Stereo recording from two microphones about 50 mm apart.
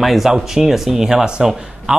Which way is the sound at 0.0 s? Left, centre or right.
Centre.